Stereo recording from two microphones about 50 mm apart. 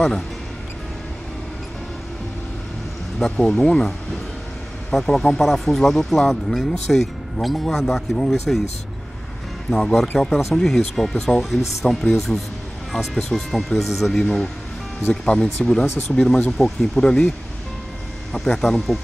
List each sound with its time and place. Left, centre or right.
3.2 s speech: centre
4.9 s speech: centre
9.7 s speech: centre
18.6 s speech: centre